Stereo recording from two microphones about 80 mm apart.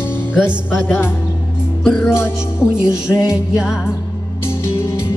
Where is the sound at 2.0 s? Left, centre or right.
Left.